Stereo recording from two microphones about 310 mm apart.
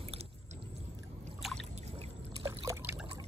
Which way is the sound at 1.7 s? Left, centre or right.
Centre.